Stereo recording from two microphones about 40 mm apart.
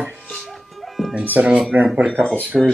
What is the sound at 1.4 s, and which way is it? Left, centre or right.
Speech, right.